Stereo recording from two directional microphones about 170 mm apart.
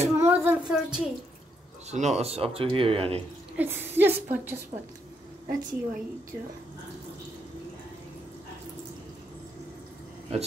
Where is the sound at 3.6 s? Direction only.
10° right (ahead or behind).